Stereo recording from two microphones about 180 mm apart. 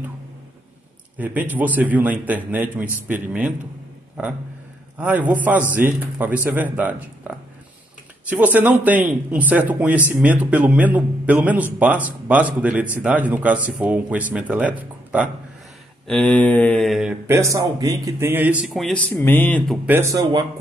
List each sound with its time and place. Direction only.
1.1 s speech: 10° right (ahead or behind)
4.2 s a sound: 5° right (ahead or behind)
4.9 s speech: 10° right (ahead or behind)
16.1 s a sound: 5° left (ahead or behind)
17.3 s speech: 15° right (ahead or behind); by 19.8 s 10° left (ahead or behind)
19.9 s speech: 15° right (ahead or behind)